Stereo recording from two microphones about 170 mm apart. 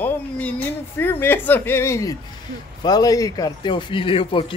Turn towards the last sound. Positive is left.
turn(degrees=30)  # may be behind; listen again after turning